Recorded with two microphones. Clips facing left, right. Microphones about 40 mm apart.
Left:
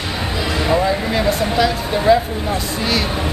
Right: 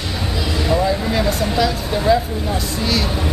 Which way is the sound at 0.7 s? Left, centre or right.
Centre.